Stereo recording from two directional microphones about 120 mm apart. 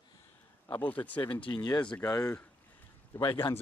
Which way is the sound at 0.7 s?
15° left (ahead or behind).